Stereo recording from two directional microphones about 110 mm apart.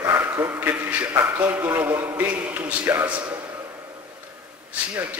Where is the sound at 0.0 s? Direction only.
20° right (ahead or behind).